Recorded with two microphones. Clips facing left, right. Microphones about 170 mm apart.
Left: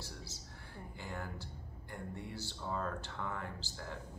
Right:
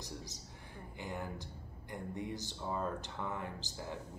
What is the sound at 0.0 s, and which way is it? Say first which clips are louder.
Speech: right 3 dB; 15° right (ahead or behind).